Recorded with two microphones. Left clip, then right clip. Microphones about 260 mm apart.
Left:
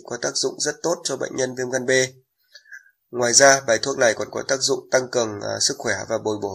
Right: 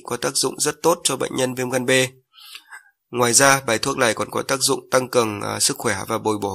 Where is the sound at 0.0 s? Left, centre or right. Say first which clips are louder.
Right 2 dB; right.